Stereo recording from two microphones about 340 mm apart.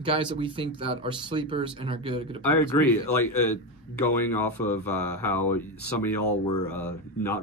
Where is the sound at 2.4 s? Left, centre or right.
Centre.